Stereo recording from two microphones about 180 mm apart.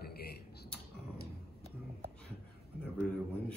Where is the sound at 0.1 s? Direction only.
60° left (ahead or behind).